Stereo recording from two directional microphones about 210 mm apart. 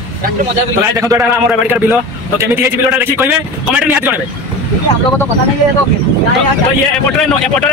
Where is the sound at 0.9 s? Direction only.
15° right (ahead or behind).